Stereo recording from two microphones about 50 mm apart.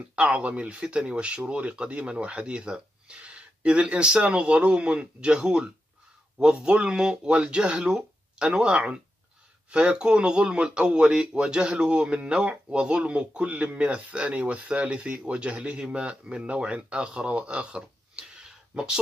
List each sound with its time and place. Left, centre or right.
0.1 s speech: right